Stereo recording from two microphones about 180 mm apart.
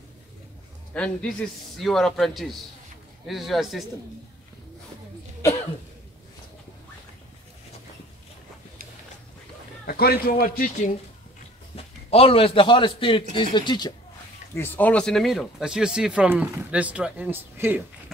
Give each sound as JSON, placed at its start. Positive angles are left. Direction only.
{"t": 0.9, "sound": "speech", "side_deg": 5}
{"t": 9.8, "sound": "a man's voice", "side_deg": 60}
{"t": 11.7, "sound": "a man's voice", "side_deg": 30}
{"t": 14.5, "sound": "speech", "side_deg": 10}